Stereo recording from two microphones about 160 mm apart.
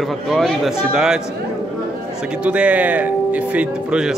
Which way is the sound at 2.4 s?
10° right (ahead or behind).